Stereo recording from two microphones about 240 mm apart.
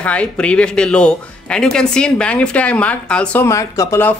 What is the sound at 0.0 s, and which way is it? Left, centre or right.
Speech, centre.